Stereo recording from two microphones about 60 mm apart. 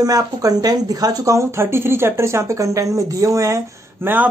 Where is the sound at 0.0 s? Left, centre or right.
Right.